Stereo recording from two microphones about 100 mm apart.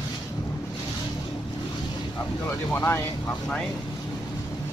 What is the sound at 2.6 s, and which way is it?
Speech, 25° left (ahead or behind).